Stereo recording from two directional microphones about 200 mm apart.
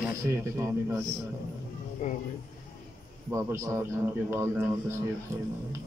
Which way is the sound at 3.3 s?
15° right (ahead or behind).